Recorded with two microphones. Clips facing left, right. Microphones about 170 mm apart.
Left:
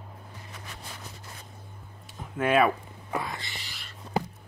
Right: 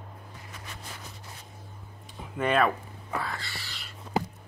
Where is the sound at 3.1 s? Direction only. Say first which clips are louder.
Left 1 dB; 20° left (ahead or behind).